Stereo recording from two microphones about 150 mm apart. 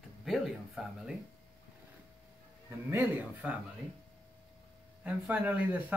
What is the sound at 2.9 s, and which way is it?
Speech, 15° right (ahead or behind).